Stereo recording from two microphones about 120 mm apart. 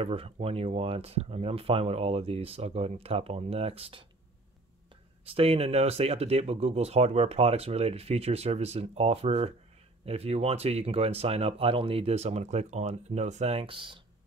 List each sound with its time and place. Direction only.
0.0 s speech: 55° right (ahead or behind)
5.3 s speech: 55° right (ahead or behind)